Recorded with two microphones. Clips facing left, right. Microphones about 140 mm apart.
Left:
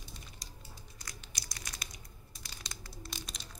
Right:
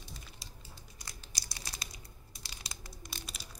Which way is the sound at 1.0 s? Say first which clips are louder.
Even; 30° right (ahead or behind).